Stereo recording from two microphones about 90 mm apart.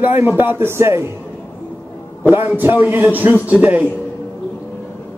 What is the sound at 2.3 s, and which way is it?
A man's voice, 20° right (ahead or behind).